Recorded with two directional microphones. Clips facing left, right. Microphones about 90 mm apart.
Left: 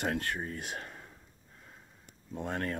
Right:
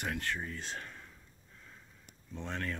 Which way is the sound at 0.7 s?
35° left (ahead or behind).